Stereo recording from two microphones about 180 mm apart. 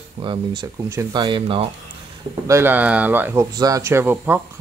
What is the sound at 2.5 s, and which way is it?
Speech, 10° right (ahead or behind).